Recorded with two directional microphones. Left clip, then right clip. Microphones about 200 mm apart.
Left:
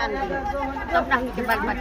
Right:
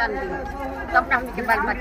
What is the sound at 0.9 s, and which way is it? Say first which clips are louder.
Speech: right 2 dB; 25° left (ahead or behind).